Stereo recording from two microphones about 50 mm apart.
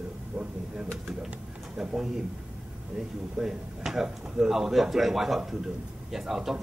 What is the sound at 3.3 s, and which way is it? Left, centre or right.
Speech, centre.